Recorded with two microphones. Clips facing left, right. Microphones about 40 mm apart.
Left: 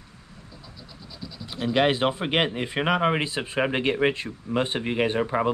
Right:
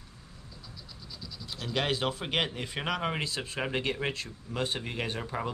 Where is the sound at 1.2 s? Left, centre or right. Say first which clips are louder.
Left 10 dB; left.